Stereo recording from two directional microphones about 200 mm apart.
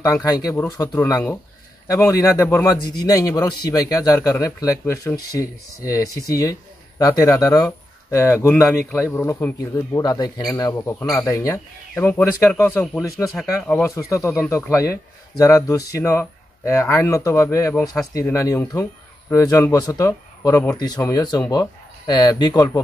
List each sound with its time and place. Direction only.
0.0 s a man's voice: 15° left (ahead or behind)